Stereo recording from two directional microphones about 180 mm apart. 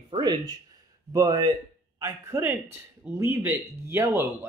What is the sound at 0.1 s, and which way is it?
Speech, 25° right (ahead or behind).